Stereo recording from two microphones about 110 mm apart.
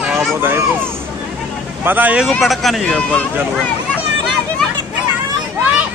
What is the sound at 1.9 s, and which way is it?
Speech, 15° right (ahead or behind).